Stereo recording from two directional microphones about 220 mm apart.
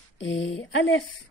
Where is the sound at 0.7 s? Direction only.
55° left (ahead or behind).